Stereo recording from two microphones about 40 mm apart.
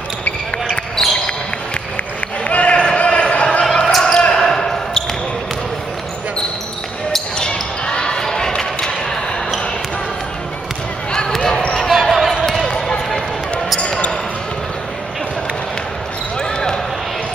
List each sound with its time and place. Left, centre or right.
0.7 s basketball bounce: centre
2.4 s a sound: left
3.6 s basketball bounce: centre
7.3 s basketball bounce: left
11.1 s basketball bounce: centre
11.9 s basketball bounce: centre
12.6 s run: centre
13.7 s basketball bounce: left
16.3 s basketball bounce: centre